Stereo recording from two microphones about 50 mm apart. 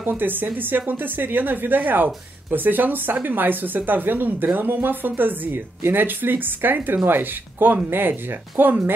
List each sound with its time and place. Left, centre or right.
0.0 s a woman's voice: right